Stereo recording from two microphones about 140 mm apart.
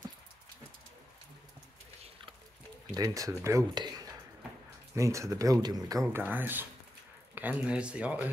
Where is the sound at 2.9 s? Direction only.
25° right (ahead or behind).